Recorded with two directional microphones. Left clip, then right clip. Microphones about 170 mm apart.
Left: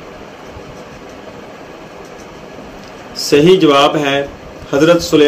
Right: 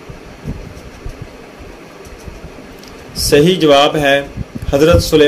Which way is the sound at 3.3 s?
55° right (ahead or behind).